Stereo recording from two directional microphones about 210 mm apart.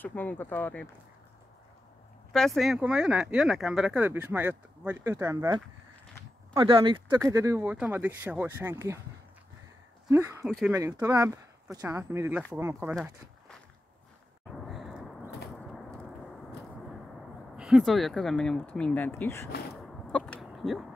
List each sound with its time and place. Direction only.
0.0 s speech: 10° left (ahead or behind)
2.3 s speech: centre (ahead or behind)
10.0 s speech: 15° right (ahead or behind)
10.4 s speech: centre (ahead or behind)
10.7 s speech: 15° right (ahead or behind)
12.9 s speech: centre (ahead or behind)
14.6 s a sound: centre (ahead or behind)
17.6 s speech: 5° right (ahead or behind)
19.9 s chicken: 5° left (ahead or behind)